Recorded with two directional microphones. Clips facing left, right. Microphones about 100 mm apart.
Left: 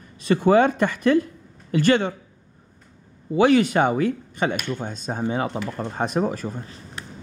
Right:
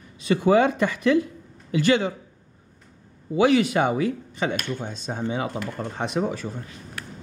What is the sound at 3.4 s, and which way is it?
Speech, 50° left (ahead or behind).